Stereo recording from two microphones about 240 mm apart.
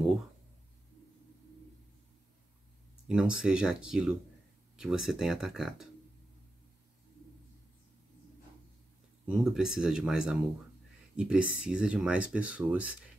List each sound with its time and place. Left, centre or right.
3.1 s speech: centre
9.4 s speech: centre